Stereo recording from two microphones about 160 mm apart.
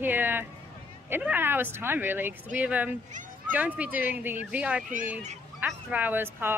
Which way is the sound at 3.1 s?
50° right (ahead or behind).